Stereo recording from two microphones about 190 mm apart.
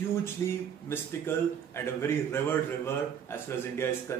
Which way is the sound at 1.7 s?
15° left (ahead or behind).